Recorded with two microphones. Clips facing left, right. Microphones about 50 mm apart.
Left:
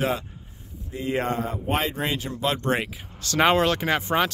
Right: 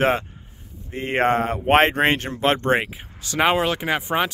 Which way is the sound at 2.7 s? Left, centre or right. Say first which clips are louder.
Right 5 dB; right.